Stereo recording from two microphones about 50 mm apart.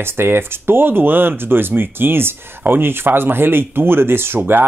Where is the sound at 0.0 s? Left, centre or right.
Right.